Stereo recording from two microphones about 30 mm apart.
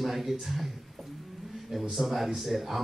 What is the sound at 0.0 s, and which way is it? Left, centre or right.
Speech, centre.